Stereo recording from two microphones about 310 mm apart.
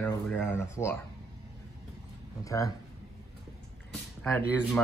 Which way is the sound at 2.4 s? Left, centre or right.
Centre.